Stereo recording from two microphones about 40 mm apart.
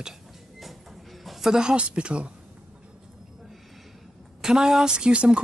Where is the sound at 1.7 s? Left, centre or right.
Right.